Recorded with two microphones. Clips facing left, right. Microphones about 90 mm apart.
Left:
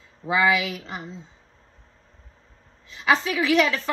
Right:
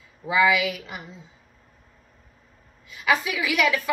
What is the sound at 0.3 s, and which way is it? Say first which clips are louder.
Speech: right 1 dB; 40° left (ahead or behind).